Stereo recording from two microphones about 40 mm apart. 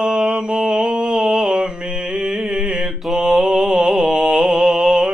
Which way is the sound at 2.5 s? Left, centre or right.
Centre.